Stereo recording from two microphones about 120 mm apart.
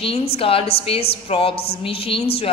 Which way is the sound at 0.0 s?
50° left (ahead or behind).